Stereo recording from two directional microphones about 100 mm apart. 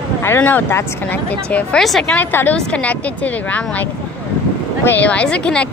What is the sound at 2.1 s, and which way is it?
Speech, 20° left (ahead or behind).